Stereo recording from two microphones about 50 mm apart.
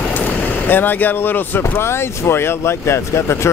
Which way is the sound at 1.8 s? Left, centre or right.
Left.